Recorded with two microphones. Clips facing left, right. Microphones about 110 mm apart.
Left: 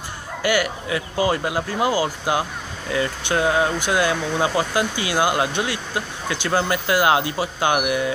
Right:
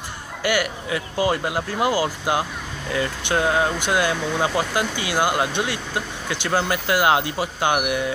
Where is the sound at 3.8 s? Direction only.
Centre (ahead or behind).